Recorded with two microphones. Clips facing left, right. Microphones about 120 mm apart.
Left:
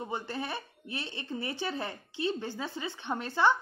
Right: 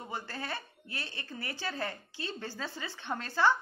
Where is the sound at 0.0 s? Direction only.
20° left (ahead or behind).